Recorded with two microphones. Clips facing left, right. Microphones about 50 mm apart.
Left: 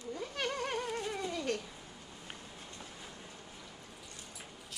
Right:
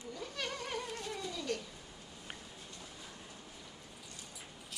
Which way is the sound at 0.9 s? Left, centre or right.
Left.